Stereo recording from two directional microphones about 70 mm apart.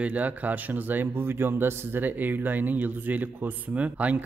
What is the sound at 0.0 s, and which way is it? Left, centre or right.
Speech, right.